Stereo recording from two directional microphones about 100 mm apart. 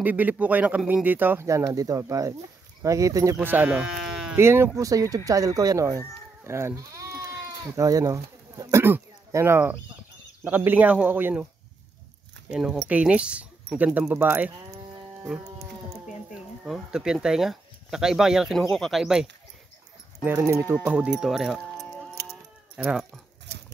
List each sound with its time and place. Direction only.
0.0 s speech: 15° right (ahead or behind); by 3.3 s 35° right (ahead or behind)
3.3 s speech: 20° right (ahead or behind)
4.4 s speech: 25° right (ahead or behind)
7.2 s goat: 30° right (ahead or behind)
8.8 s speech: 25° right (ahead or behind)
12.4 s speech: 10° right (ahead or behind)
16.3 s speech: 5° right (ahead or behind)
20.2 s speech: 25° right (ahead or behind)
20.7 s speech: 15° right (ahead or behind)